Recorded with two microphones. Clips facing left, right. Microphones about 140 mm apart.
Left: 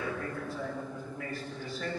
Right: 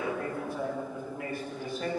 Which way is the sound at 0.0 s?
20° right (ahead or behind).